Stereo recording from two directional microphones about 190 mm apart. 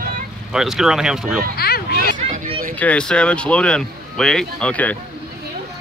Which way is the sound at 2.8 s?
5° left (ahead or behind).